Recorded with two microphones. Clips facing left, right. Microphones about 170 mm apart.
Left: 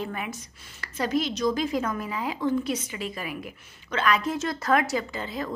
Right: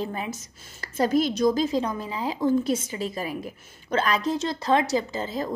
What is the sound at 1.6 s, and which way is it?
A woman's voice, 30° right (ahead or behind).